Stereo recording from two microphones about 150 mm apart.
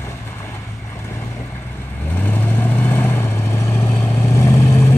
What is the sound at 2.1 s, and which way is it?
Vehicle, 10° left (ahead or behind).